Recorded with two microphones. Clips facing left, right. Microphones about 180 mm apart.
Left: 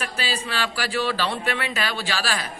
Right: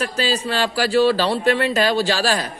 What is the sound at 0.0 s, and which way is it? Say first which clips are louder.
Speech: right 7 dB; 40° right (ahead or behind).